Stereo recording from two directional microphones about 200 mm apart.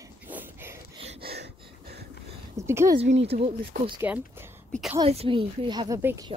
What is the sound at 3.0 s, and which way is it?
Speech, 30° right (ahead or behind).